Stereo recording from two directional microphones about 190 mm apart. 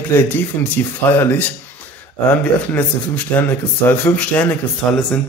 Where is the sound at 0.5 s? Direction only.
10° left (ahead or behind).